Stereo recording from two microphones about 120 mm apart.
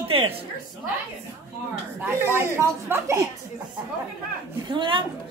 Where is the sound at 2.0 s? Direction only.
15° right (ahead or behind).